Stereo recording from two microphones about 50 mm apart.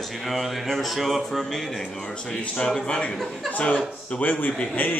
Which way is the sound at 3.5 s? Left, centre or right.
Left.